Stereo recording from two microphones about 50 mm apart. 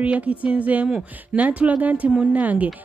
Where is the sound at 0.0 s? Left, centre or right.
Right.